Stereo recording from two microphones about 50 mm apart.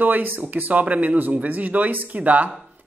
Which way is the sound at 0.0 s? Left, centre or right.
Right.